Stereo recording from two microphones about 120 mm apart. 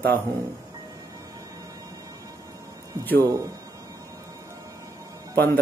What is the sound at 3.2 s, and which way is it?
Speech, 30° right (ahead or behind).